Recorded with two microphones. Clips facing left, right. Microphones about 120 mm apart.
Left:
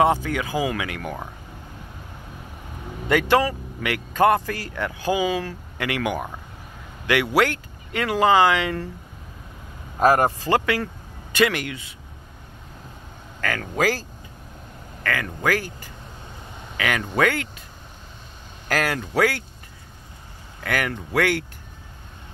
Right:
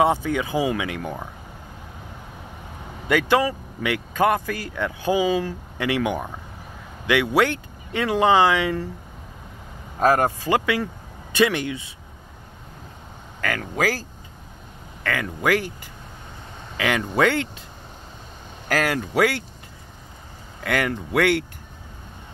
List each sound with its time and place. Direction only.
0.0 s speech: 20° right (ahead or behind)
3.1 s speech: 15° right (ahead or behind)
9.9 s speech: 10° left (ahead or behind)
10.4 s speech: 15° right (ahead or behind)
13.4 s speech: 15° right (ahead or behind)
15.0 s speech: 20° right (ahead or behind)
18.8 s speech: 15° right (ahead or behind)
20.6 s speech: 25° right (ahead or behind)